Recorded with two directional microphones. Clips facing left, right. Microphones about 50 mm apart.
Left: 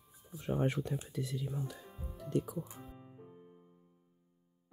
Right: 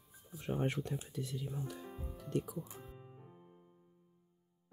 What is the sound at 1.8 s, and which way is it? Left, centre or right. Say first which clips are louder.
Music: even; centre.